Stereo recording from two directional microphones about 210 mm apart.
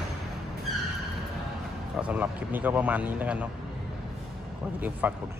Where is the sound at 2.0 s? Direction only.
5° right (ahead or behind).